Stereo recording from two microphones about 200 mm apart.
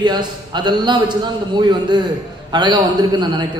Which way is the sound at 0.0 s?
20° right (ahead or behind).